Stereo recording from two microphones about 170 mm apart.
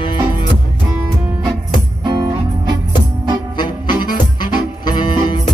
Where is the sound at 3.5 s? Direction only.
25° left (ahead or behind).